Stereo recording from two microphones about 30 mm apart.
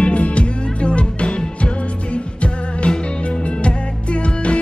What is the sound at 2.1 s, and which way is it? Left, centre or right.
Music, left.